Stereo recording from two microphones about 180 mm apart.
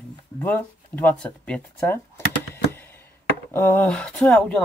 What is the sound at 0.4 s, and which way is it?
Speech, 10° left (ahead or behind).